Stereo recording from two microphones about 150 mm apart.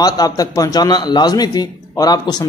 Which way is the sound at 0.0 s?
25° left (ahead or behind).